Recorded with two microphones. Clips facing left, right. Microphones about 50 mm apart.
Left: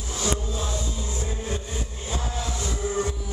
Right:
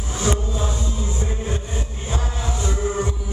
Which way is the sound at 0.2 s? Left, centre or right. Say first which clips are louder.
Right 5 dB; right.